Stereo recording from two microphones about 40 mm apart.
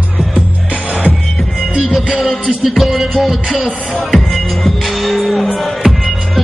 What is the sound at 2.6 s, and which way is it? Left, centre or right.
Music, centre.